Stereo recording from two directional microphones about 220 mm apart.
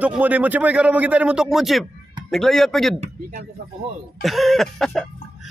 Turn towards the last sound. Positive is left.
turn(degrees=0)  # may be behind; listen again after turning